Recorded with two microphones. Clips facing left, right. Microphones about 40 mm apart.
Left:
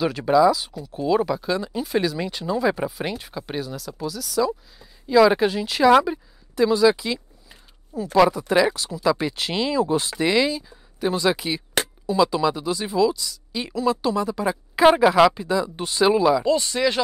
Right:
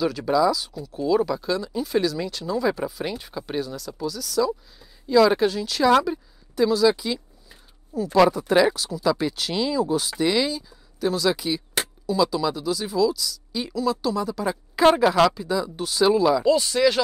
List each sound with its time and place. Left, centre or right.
0.0 s speech: centre
3.2 s speech: centre
7.9 s speech: left
8.5 s speech: centre
9.2 s speech: left
10.1 s speech: centre
16.4 s speech: left